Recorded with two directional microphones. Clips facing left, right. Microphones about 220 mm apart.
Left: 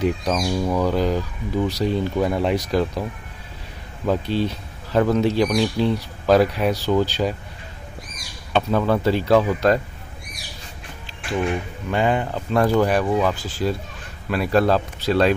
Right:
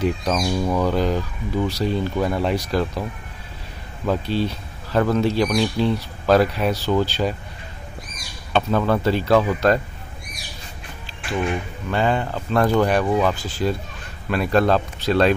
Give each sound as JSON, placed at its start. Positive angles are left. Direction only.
{"t": 0.0, "sound": "speech", "side_deg": 15}
{"t": 8.5, "sound": "speech", "side_deg": 10}
{"t": 11.1, "sound": "speech", "side_deg": 20}